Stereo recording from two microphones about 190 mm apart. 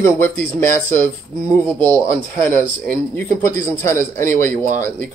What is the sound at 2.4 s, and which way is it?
A man's voice, 10° left (ahead or behind).